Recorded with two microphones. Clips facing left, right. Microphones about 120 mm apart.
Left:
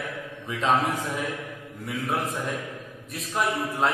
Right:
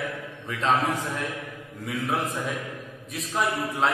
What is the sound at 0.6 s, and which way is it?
Speech, 15° left (ahead or behind).